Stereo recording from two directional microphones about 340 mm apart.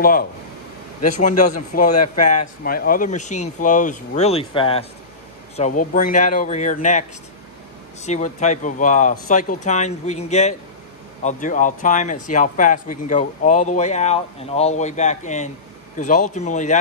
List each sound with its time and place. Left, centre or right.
1.7 s speech: left